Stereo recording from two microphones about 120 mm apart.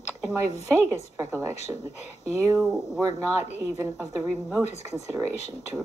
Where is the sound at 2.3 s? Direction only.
25° right (ahead or behind).